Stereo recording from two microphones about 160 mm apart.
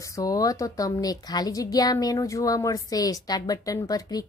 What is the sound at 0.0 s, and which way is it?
A woman's voice, 20° left (ahead or behind).